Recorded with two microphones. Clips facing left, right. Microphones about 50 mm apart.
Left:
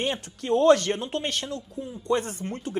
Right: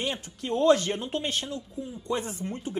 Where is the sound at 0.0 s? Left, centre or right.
Left.